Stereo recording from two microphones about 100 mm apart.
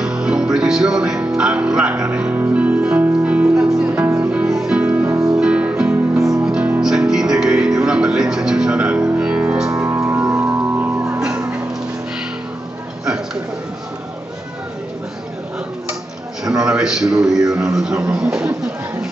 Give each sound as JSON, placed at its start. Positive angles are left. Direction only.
{"t": 0.0, "sound": "music", "side_deg": -10}
{"t": 9.8, "sound": "music", "side_deg": -30}
{"t": 11.1, "sound": "music", "side_deg": -5}
{"t": 13.0, "sound": "a sound", "side_deg": -5}
{"t": 16.4, "sound": "a sound", "side_deg": -5}
{"t": 17.7, "sound": "speech", "side_deg": -5}